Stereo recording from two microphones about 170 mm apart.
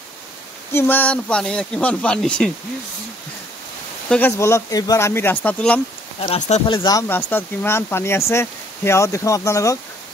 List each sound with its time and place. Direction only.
0.7 s speech: 10° left (ahead or behind)
4.1 s speech: 15° left (ahead or behind)
6.7 s speech: 25° left (ahead or behind)